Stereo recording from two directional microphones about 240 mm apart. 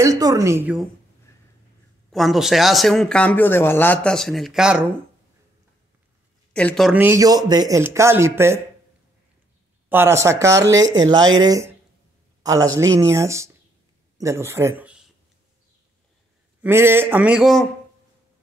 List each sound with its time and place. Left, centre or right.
0.0 s a woman's voice: centre
1.3 s a sound: centre
2.0 s speech: centre
6.5 s speech: centre
9.8 s speech: centre
11.1 s speech: right
11.4 s speech: centre
16.6 s speech: centre